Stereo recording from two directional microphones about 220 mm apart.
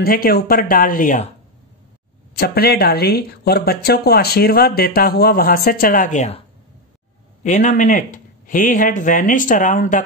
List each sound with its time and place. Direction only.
0.0 s speech: 40° left (ahead or behind)
2.3 s speech: 45° left (ahead or behind)
7.4 s speech: 35° left (ahead or behind)